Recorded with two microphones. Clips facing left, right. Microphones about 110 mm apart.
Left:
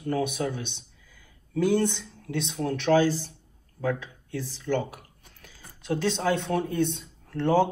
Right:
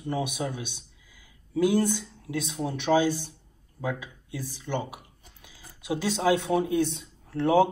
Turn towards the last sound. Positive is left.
turn(degrees=-5)  # may be behind; listen again after turning